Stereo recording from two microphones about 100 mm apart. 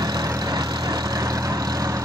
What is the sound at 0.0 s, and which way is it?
Vehicle, 40° right (ahead or behind).